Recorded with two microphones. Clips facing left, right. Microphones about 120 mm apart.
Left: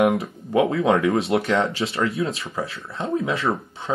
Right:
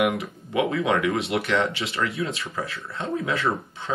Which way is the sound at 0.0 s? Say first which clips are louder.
Left 4 dB; 35° left (ahead or behind).